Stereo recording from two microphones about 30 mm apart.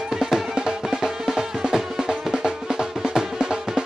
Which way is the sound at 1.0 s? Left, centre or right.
Centre.